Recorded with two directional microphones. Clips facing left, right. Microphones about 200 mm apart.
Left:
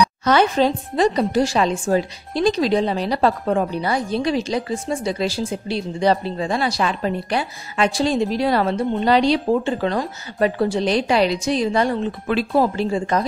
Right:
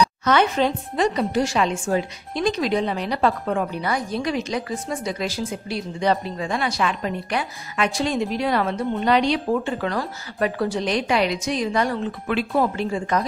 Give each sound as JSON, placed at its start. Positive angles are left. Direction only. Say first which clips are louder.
{"t": 0.2, "sound": "a woman's voice", "louder": "left 4 dB", "side_deg": 35}